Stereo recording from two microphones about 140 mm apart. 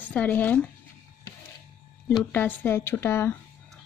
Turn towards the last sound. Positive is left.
turn(degrees=15)  # may be behind; listen again after turning